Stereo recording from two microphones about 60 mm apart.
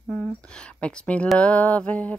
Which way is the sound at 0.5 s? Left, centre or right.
Centre.